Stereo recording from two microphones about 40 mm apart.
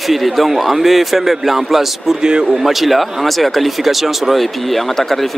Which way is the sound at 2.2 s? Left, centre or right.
Centre.